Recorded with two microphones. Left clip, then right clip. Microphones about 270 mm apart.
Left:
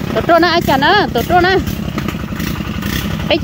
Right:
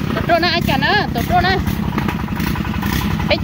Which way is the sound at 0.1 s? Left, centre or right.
Centre.